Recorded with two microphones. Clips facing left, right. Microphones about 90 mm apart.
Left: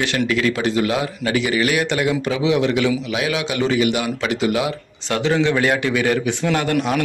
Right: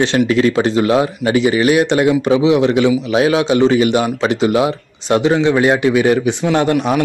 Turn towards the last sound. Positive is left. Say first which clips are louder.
# right 5 dB
turn(degrees=-20)  # may be behind; listen again after turning